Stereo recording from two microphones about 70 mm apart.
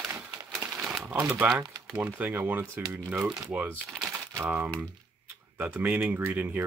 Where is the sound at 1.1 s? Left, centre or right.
Right.